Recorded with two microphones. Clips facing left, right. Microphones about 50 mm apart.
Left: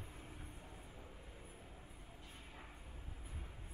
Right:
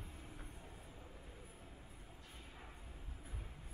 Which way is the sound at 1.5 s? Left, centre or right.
Centre.